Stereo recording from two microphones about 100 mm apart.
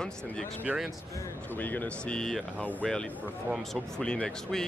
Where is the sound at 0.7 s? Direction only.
15° right (ahead or behind).